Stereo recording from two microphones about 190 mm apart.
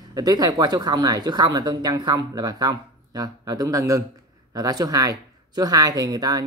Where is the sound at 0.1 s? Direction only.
20° right (ahead or behind).